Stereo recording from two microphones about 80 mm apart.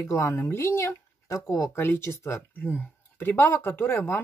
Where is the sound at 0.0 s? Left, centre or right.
Left.